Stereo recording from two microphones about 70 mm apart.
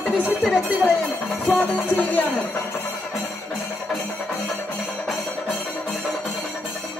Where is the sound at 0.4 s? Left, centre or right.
Centre.